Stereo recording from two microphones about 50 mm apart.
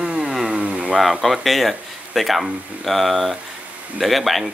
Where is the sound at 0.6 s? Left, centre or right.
Right.